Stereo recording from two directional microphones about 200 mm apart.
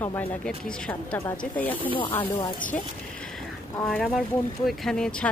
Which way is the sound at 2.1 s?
20° left (ahead or behind).